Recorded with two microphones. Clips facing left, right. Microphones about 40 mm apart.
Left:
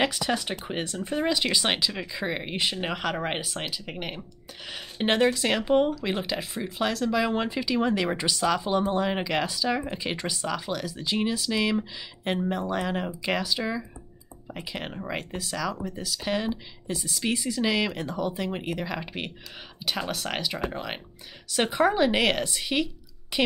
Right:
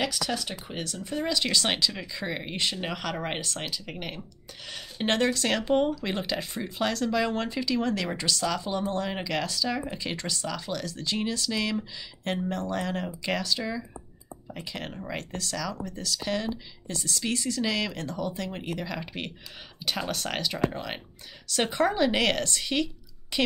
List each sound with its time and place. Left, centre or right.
0.0 s speech: left